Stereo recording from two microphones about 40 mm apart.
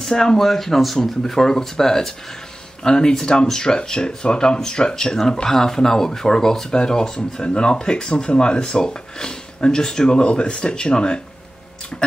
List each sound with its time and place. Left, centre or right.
0.1 s speech: centre
0.4 s speech: centre